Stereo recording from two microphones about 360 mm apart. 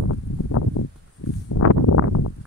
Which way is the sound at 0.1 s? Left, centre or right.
Left.